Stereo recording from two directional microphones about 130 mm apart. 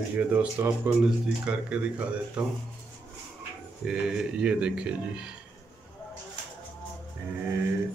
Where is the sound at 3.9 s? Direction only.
5° right (ahead or behind).